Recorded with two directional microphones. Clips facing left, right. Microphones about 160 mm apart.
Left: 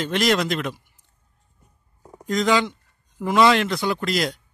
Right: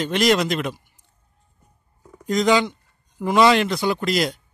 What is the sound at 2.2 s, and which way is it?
Speech, centre (ahead or behind).